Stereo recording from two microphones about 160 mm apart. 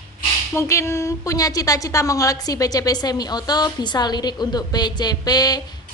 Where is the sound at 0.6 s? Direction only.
15° left (ahead or behind).